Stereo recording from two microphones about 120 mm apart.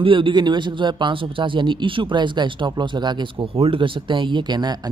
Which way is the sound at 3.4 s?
55° right (ahead or behind).